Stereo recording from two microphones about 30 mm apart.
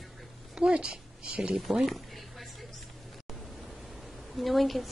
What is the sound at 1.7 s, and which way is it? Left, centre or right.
Speech, centre.